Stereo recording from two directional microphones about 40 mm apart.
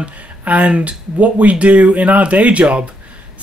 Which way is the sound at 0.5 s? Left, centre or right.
Right.